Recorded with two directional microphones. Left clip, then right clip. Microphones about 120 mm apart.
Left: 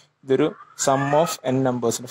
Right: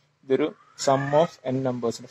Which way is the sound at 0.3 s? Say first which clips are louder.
Left 4 dB; 50° left (ahead or behind).